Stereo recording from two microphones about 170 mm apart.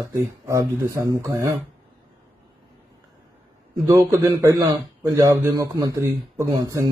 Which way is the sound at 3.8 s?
20° right (ahead or behind).